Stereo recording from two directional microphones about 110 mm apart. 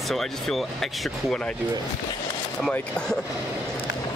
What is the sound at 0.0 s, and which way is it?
Speech, centre (ahead or behind).